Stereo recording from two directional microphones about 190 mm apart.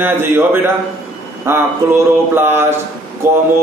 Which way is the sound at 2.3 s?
10° right (ahead or behind).